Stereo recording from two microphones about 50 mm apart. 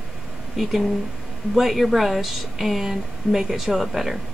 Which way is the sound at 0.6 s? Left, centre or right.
Centre.